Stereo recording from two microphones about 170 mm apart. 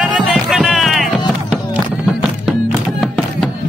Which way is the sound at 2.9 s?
Centre (ahead or behind).